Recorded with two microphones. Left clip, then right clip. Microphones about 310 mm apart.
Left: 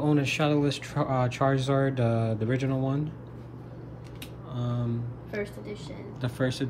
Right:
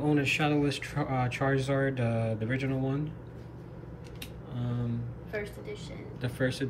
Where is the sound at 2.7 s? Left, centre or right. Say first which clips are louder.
Left 3 dB; left.